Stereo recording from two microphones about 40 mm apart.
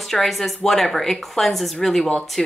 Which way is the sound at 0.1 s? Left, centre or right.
Centre.